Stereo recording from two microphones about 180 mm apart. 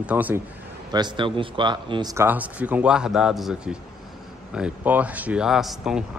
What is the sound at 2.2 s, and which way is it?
Speech, 10° right (ahead or behind).